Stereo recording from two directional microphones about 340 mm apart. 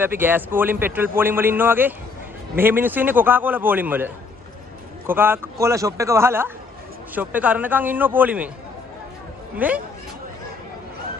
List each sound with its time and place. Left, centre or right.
0.0 s a man's voice: centre
9.6 s a man's voice: centre